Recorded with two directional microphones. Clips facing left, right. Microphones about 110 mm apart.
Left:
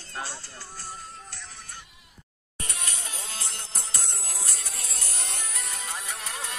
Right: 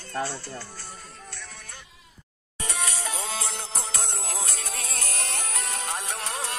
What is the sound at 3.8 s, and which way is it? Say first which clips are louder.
Music: right 6 dB; 70° right (ahead or behind).